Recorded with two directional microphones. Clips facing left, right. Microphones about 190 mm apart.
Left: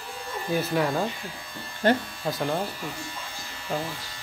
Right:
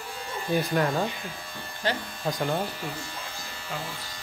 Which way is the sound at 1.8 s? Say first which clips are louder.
Left 7 dB; 55° left (ahead or behind).